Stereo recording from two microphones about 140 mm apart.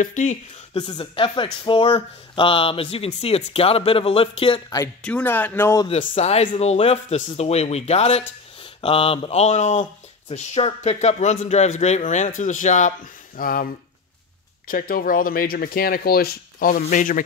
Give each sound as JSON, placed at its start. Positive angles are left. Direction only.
{"t": 0.0, "sound": "speech", "side_deg": 65}
{"t": 0.7, "sound": "speech", "side_deg": 35}
{"t": 5.0, "sound": "speech", "side_deg": 10}
{"t": 6.1, "sound": "speech", "side_deg": 45}
{"t": 14.7, "sound": "speech", "side_deg": 85}